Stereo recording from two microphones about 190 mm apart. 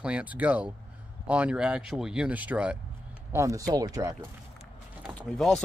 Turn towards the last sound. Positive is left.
turn(degrees=0)  # may be behind; listen again after turning